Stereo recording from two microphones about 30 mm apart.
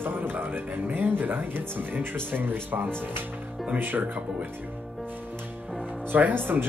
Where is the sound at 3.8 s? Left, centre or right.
Right.